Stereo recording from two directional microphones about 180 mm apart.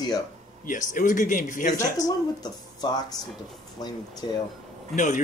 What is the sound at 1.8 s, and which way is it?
Speech, 20° left (ahead or behind).